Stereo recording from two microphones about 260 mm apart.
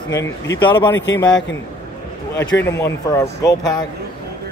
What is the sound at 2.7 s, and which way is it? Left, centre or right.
A man's voice, centre.